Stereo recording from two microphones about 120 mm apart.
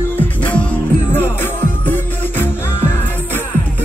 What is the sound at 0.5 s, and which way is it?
Music, 10° left (ahead or behind).